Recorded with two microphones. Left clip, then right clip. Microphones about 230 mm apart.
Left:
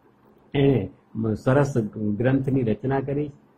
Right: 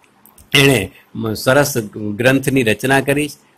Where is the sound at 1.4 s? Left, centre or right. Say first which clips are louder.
Right 9 dB; right.